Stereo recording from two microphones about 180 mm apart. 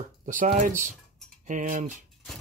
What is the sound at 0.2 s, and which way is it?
Speech, 50° right (ahead or behind).